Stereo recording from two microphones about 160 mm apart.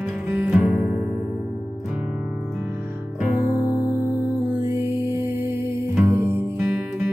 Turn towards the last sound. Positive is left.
turn(degrees=-15)  # may be behind; listen again after turning